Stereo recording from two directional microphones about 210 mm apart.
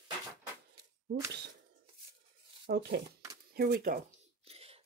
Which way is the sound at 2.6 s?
50° right (ahead or behind).